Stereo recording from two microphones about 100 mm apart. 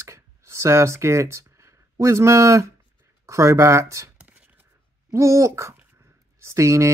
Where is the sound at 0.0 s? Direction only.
30° right (ahead or behind).